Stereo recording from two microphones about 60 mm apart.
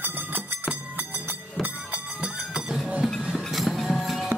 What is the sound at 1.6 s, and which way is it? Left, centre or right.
Music, centre.